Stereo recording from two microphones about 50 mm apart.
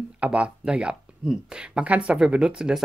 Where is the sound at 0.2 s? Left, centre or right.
Right.